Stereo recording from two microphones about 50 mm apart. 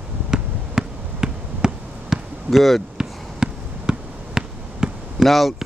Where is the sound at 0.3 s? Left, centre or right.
Centre.